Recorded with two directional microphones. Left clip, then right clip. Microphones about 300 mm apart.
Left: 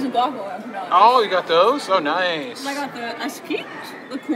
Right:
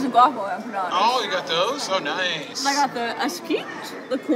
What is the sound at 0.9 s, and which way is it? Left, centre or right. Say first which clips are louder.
Speech: left 8 dB; centre.